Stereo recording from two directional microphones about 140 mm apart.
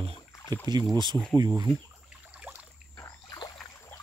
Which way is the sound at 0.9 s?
30° right (ahead or behind).